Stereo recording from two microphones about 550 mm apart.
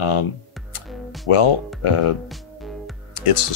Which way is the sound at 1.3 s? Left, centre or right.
Left.